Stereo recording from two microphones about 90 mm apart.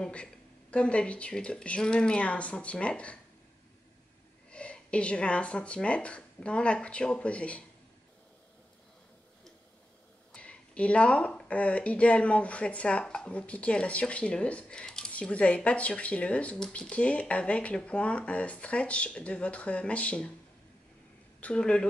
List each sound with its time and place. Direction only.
0.0 s speech: 10° left (ahead or behind)
4.5 s speech: 15° left (ahead or behind)
10.3 s speech: 15° left (ahead or behind)
21.4 s speech: 10° left (ahead or behind)